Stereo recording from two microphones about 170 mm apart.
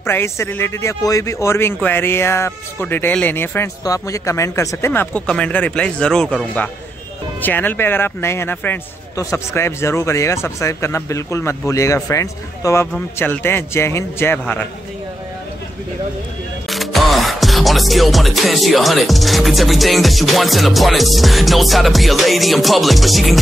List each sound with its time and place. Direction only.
0.0 s speech: 15° left (ahead or behind)
16.6 s music: centre (ahead or behind)